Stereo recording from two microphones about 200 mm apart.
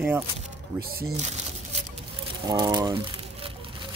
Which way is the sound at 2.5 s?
20° right (ahead or behind).